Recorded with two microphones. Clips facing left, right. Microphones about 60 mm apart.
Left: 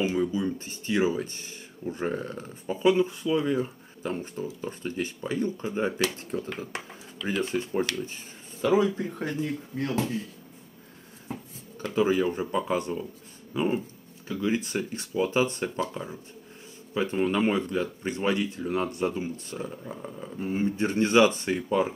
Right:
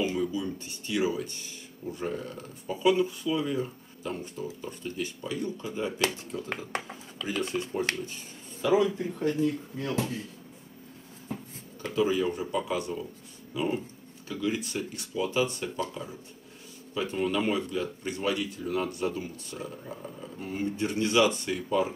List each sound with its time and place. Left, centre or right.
0.0 s speech: left
9.4 s speech: left
11.8 s speech: left